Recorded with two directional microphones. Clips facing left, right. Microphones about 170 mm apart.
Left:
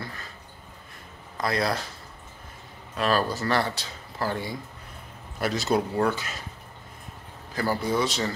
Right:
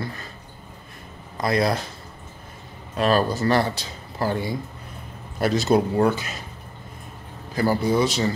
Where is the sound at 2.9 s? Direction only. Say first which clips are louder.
Right 4 dB; 20° right (ahead or behind).